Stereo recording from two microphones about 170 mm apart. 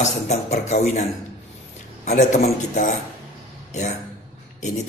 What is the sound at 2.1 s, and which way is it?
Speech, 45° left (ahead or behind).